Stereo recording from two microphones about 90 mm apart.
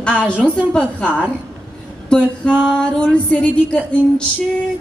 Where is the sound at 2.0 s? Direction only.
10° left (ahead or behind).